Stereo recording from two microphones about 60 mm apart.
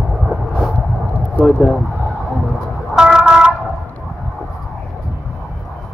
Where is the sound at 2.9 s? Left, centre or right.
Centre.